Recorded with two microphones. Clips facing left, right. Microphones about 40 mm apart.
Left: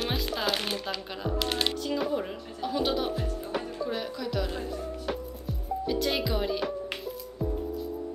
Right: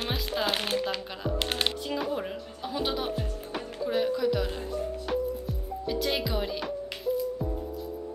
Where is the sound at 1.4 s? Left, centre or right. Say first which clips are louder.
Left 1 dB; right.